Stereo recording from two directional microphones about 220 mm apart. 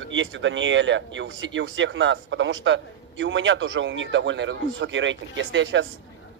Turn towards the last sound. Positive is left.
turn(degrees=-55)  # may be behind; listen again after turning